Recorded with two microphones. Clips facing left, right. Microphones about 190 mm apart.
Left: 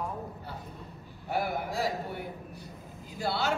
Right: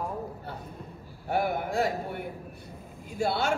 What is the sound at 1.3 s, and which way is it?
Speech, 55° right (ahead or behind).